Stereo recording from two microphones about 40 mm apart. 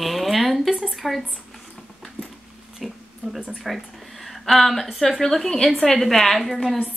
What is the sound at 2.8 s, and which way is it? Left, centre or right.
Oink, centre.